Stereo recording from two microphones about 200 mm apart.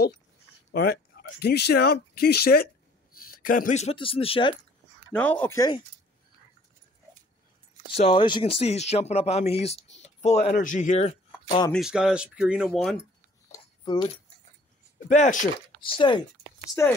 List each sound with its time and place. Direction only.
1.4 s speech: 55° left (ahead or behind); by 4.6 s 25° left (ahead or behind)
5.1 s speech: 10° left (ahead or behind)
7.9 s speech: 25° left (ahead or behind)
11.7 s speech: 5° right (ahead or behind)
13.5 s a sound: 20° left (ahead or behind)
15.0 s speech: 40° left (ahead or behind)
15.9 s speech: 25° left (ahead or behind)